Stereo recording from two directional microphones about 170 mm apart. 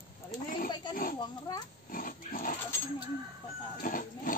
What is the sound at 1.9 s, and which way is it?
Pig, 55° left (ahead or behind).